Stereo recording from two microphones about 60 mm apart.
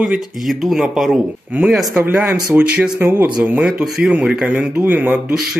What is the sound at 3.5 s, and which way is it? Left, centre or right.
Speech, centre.